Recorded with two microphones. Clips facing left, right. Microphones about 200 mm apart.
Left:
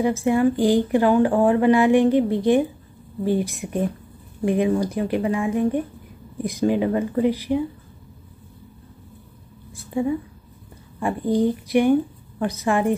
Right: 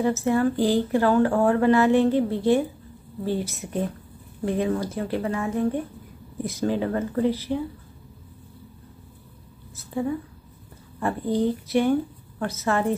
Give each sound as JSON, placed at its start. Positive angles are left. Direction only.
{"t": 0.0, "sound": "speech", "side_deg": 15}
{"t": 9.8, "sound": "speech", "side_deg": 15}